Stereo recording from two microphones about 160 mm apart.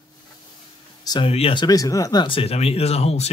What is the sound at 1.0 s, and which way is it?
Speech, 35° left (ahead or behind).